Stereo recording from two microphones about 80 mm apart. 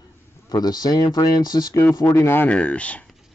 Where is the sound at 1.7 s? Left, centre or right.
Left.